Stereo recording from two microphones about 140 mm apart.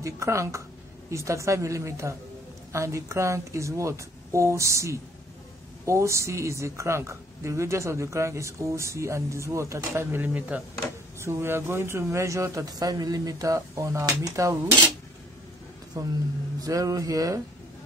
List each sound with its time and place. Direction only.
0.0 s a woman's voice: 20° right (ahead or behind)
16.0 s a woman's voice: 25° right (ahead or behind)